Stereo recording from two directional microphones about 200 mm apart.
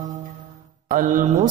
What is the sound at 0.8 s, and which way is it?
Mantra, 40° right (ahead or behind).